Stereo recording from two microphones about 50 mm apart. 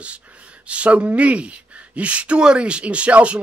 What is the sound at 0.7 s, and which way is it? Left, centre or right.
Speech, right.